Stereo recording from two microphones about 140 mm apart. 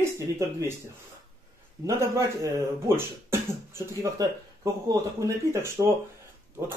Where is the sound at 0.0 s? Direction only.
20° right (ahead or behind).